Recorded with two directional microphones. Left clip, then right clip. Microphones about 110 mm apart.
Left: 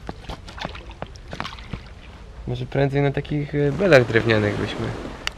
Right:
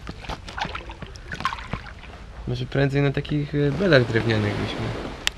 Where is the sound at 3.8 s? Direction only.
15° left (ahead or behind).